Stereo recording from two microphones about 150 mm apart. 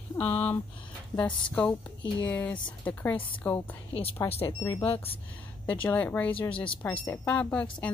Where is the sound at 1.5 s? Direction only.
5° left (ahead or behind).